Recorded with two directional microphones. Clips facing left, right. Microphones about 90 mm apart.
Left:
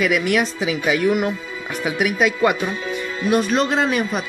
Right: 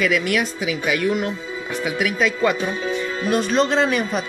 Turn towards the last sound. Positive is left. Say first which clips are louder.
# even
turn(degrees=5)  # may be behind; listen again after turning